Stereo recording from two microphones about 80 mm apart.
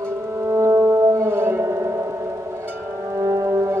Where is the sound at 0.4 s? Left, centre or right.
Right.